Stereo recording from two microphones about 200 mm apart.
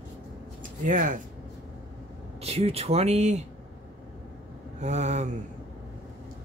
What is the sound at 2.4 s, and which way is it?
Speech, 30° right (ahead or behind).